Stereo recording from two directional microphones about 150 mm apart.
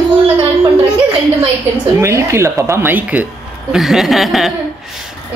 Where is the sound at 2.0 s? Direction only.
20° right (ahead or behind); by 4.5 s centre (ahead or behind).